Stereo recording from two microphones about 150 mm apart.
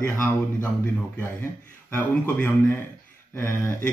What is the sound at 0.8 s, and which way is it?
A man's voice, 10° left (ahead or behind).